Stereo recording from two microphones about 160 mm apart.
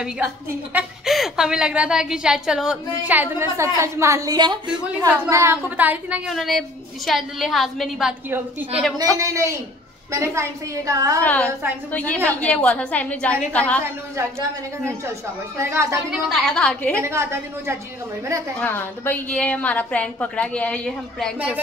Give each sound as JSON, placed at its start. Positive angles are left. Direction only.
{"t": 0.7, "sound": "a woman's voice", "side_deg": 0}
{"t": 5.3, "sound": "a woman's voice", "side_deg": -15}
{"t": 8.3, "sound": "a woman's voice", "side_deg": -10}
{"t": 11.2, "sound": "a woman's voice", "side_deg": 10}
{"t": 14.9, "sound": "a woman's voice", "side_deg": -15}
{"t": 16.1, "sound": "a woman's voice", "side_deg": 0}
{"t": 17.0, "sound": "a woman's voice", "side_deg": -15}
{"t": 18.6, "sound": "a woman's voice", "side_deg": 10}